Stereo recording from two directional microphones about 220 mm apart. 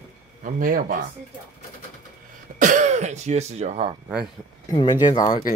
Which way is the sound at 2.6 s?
35° right (ahead or behind).